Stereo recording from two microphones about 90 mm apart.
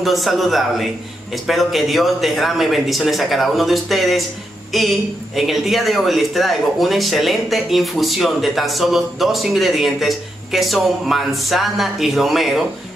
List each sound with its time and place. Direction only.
0.0 s speech: centre (ahead or behind)